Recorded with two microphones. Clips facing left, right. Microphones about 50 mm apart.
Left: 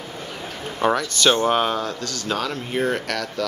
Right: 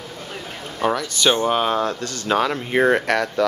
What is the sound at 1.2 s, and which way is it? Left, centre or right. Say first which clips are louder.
Speech: even; centre.